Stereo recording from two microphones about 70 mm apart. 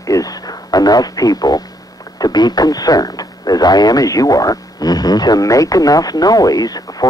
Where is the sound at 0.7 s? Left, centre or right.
Left.